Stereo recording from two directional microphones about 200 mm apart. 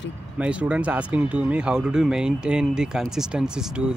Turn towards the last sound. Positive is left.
turn(degrees=0)  # may be behind; listen again after turning